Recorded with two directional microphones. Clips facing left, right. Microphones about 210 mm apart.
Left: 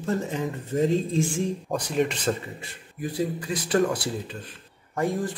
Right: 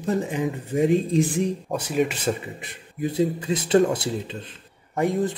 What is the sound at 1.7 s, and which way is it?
Speech, 5° right (ahead or behind).